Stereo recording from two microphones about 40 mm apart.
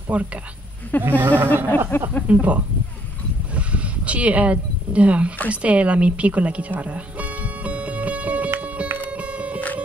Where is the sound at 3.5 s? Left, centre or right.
Right.